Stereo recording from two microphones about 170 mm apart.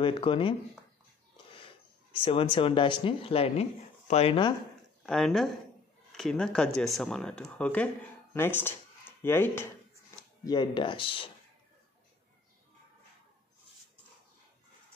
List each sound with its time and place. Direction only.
0.0 s speech: 30° left (ahead or behind)
2.2 s speech: 30° left (ahead or behind)
5.0 s speech: centre (ahead or behind)
10.4 s speech: 25° left (ahead or behind)